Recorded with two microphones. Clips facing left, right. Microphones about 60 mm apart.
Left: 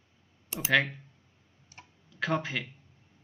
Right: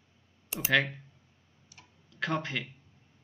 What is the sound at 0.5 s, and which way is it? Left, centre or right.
Speech, centre.